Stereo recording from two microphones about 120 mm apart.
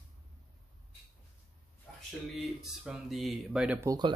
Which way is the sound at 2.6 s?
5° right (ahead or behind).